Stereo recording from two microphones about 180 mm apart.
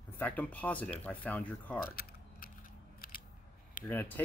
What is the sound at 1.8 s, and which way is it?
Mechanisms, 55° left (ahead or behind).